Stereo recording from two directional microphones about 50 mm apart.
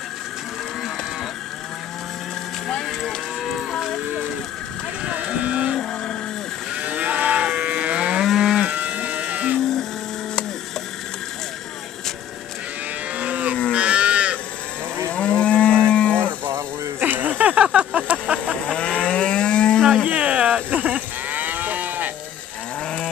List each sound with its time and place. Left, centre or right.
5.1 s cattle: right
6.8 s moo: right
7.5 s livestock: right
7.9 s moo: right
8.2 s moo: centre
8.7 s cattle: right
13.1 s cattle: right
13.7 s moo: right
15.0 s moo: left
17.0 s a sound: right
18.7 s a sound: centre
19.8 s a sound: centre
20.1 s cattle: right